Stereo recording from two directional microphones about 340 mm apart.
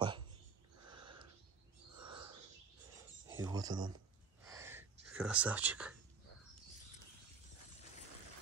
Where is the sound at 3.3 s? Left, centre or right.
Centre.